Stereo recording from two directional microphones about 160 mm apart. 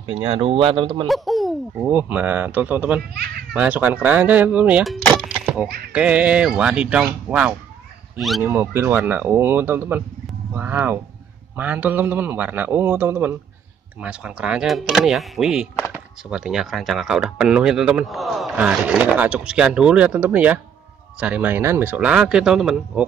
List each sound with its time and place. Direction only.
0.0 s speech: 25° right (ahead or behind)
1.0 s speech: centre (ahead or behind)
1.9 s a man's voice: 10° right (ahead or behind)
5.2 s music: 10° right (ahead or behind)
5.9 s a man's voice: 10° right (ahead or behind)
8.5 s a man's voice: 15° right (ahead or behind)